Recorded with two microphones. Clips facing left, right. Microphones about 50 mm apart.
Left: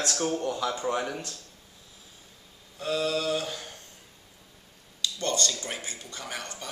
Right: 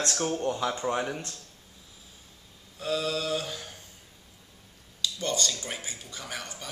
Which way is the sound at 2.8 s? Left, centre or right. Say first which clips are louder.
Left 2 dB; centre.